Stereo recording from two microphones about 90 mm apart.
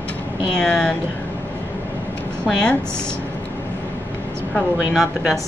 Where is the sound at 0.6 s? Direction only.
10° left (ahead or behind).